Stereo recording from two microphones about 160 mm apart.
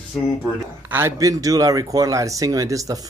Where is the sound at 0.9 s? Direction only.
20° right (ahead or behind).